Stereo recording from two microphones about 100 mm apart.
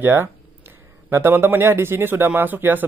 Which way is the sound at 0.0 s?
25° right (ahead or behind).